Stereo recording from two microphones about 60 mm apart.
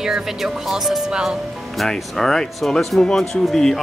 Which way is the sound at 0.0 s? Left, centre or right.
Centre.